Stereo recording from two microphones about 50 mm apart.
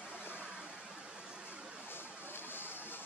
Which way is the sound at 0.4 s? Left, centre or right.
Right.